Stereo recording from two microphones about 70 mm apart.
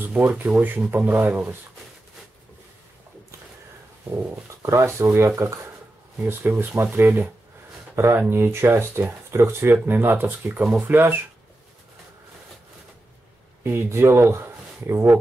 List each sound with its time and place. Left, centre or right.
0.0 s a sound: right
0.3 s speech: centre
0.9 s speech: right
4.5 s speech: right
6.6 s speech: right
13.7 s speech: right